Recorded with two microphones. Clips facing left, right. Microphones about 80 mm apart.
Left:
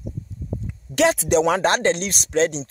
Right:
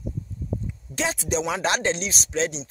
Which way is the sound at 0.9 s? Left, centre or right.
Left.